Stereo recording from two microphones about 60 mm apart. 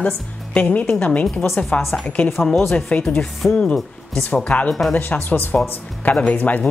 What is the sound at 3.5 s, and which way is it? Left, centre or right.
Speech, centre.